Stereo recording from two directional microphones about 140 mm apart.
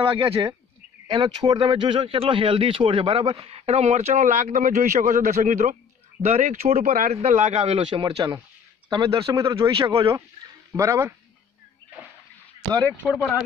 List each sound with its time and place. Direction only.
0.0 s speech: 35° right (ahead or behind); by 7.2 s 65° right (ahead or behind)
7.2 s speech: 50° right (ahead or behind)
7.9 s speech: 30° right (ahead or behind)